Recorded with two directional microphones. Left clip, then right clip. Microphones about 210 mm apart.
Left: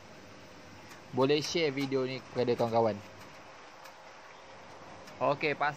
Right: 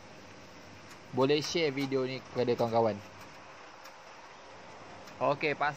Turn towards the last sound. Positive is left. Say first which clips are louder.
# even
turn(degrees=0)  # may be behind; listen again after turning